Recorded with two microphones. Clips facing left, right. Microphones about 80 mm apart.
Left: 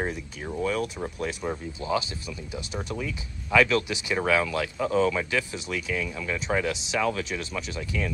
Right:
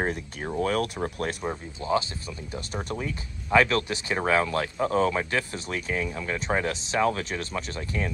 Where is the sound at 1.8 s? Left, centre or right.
Right.